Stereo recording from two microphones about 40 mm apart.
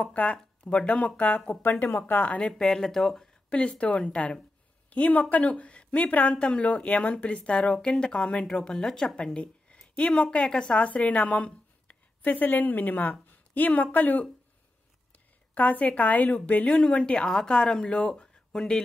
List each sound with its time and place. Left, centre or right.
0.1 s speech: left
1.6 s speech: left
2.5 s speech: centre
3.4 s speech: left
10.4 s speech: centre
11.1 s a woman's voice: left
13.3 s a sound: left
13.9 s speech: left
15.1 s a sound: left
16.0 s speech: left
16.8 s speech: left
17.8 s speech: left
18.2 s a sound: centre